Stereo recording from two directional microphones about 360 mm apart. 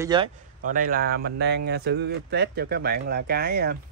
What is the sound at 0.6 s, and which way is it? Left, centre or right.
Speech, right.